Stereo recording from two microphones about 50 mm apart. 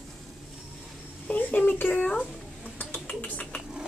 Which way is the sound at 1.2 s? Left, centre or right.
Left.